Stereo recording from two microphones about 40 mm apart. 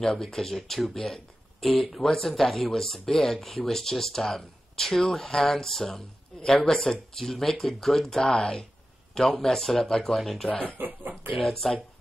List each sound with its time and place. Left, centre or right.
0.0 s speech: centre
10.2 s speech: centre
10.5 s speech: left
10.8 s speech: right
11.4 s speech: centre